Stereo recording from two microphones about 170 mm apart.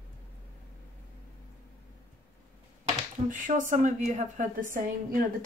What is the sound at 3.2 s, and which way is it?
Speech, 50° right (ahead or behind).